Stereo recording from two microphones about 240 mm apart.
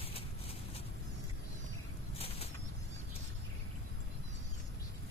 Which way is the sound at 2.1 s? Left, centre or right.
Left.